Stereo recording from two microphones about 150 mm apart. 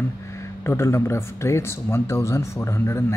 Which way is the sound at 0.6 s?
20° left (ahead or behind).